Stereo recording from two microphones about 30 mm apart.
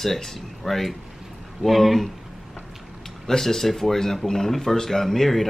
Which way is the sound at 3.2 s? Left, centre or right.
Centre.